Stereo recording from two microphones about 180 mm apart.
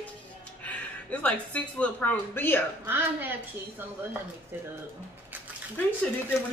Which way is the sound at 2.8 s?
10° right (ahead or behind).